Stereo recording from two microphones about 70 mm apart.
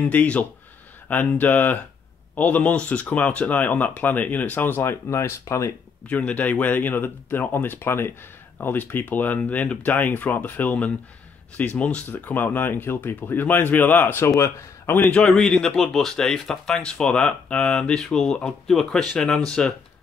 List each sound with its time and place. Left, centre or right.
0.0 s speech: centre
5.1 s speech: left
6.0 s speech: centre
14.3 s speech: left
15.2 s speech: centre